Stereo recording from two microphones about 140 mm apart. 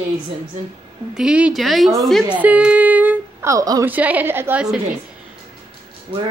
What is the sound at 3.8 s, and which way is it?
Speech, 10° right (ahead or behind).